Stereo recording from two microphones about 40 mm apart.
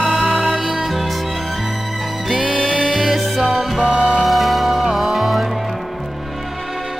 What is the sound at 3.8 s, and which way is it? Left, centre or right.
Music, right.